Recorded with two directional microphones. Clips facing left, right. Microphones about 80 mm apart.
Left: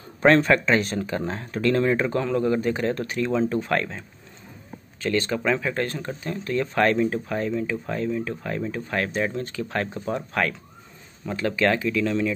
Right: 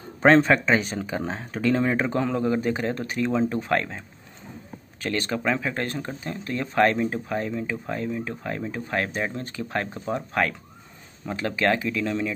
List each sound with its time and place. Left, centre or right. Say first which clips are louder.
0.7 s speech: left 1 dB; centre
5.0 s speech: left 2 dB; right